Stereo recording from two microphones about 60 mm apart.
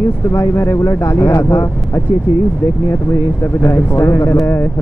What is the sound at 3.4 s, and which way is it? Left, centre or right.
Speech, left.